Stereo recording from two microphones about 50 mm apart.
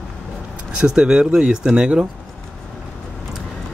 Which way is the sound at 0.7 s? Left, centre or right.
Centre.